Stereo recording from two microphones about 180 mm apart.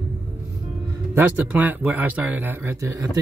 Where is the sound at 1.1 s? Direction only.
10° right (ahead or behind).